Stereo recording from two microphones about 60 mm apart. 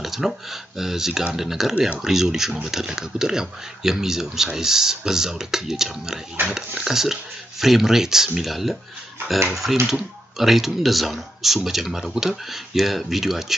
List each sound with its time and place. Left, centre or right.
0.0 s speech: centre